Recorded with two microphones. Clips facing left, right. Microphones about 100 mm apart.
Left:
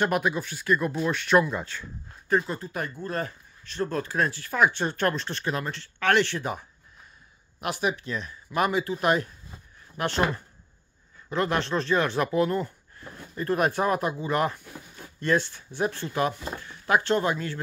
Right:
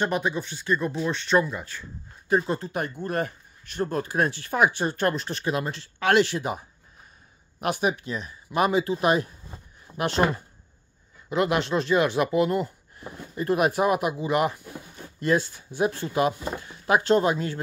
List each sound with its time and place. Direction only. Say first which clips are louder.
0.0 s speech: left 1 dB; 5° left (ahead or behind)
0.5 s speech: left 1 dB; 25° right (ahead or behind)
0.7 s speech: right 1 dB; centre (ahead or behind)
2.4 s speech: right 5 dB; 30° right (ahead or behind)
3.1 s speech: right 3 dB; 55° right (ahead or behind)
3.7 s speech: right 2 dB; 25° right (ahead or behind)
5.6 s speech: right 2 dB; 20° right (ahead or behind)
7.6 s speech: right 3 dB; 20° right (ahead or behind)
8.3 s speech: right 3 dB; 25° right (ahead or behind)